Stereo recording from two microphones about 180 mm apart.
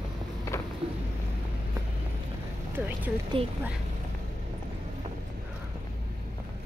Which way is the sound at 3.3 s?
30° right (ahead or behind).